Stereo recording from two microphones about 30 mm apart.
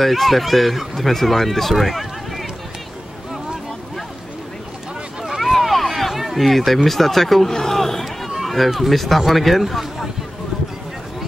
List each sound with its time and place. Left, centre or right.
0.0 s speech: centre
5.4 s run: centre
7.4 s a sound: centre
8.9 s speech: centre